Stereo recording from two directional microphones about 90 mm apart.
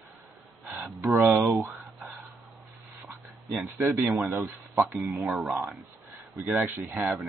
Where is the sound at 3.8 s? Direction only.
30° right (ahead or behind).